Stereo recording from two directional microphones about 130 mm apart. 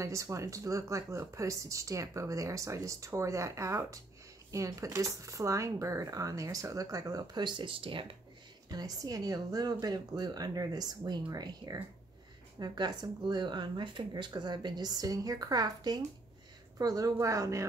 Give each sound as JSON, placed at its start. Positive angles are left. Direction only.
{"t": 0.0, "sound": "speech", "side_deg": -25}
{"t": 8.6, "sound": "speech", "side_deg": -30}